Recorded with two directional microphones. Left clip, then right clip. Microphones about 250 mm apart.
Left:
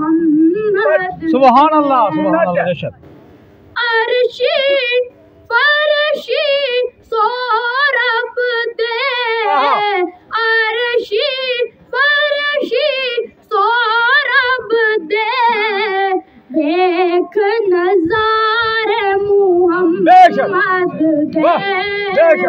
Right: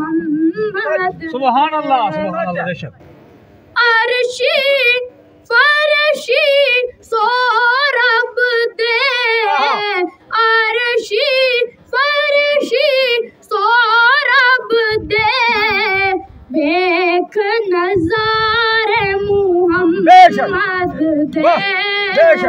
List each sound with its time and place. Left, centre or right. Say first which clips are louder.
0.5 s yodeling: left 4 dB; centre
1.2 s speech: left 8 dB; left; by 2.9 s centre
3.7 s child singing: right 2 dB; centre
20.1 s speech: right 1 dB; centre
20.4 s speech: left 2 dB; centre
21.5 s a sound: right 1 dB; centre